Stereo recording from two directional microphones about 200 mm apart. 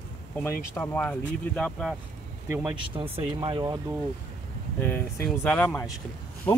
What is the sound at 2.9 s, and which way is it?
Speech, 25° right (ahead or behind).